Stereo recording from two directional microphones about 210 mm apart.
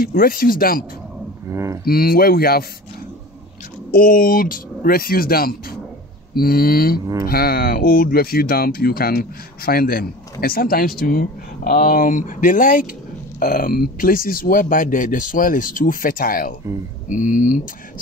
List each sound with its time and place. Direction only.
0.0 s speech: 45° left (ahead or behind)
1.5 s speech: 15° right (ahead or behind)
1.9 s speech: 45° left (ahead or behind)
3.9 s speech: 40° left (ahead or behind)